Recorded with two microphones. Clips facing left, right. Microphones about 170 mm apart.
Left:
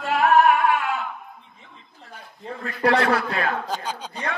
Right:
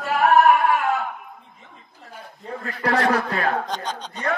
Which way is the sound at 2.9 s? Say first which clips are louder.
Left 1 dB; 40° right (ahead or behind).